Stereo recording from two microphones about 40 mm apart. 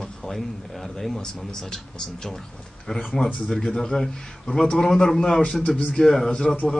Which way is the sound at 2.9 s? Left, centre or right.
Left.